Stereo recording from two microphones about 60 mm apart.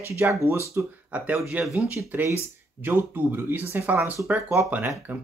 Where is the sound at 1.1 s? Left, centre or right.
Right.